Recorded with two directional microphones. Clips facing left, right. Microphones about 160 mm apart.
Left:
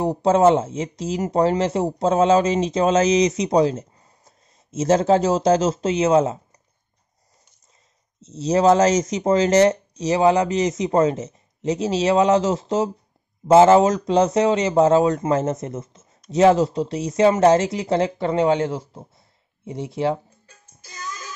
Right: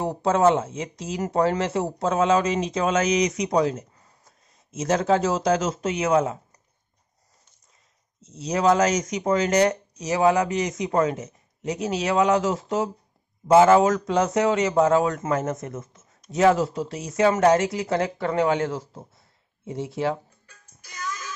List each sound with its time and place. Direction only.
0.0 s speech: 25° left (ahead or behind)
8.2 s speech: 25° left (ahead or behind)
19.6 s music: 20° left (ahead or behind)